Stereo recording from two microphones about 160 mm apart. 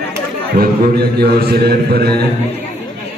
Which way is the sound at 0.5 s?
75° right (ahead or behind).